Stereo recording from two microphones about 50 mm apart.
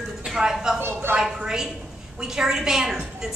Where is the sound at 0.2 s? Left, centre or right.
Centre.